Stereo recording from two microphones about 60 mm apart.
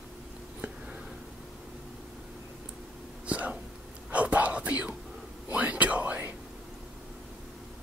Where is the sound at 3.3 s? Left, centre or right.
Right.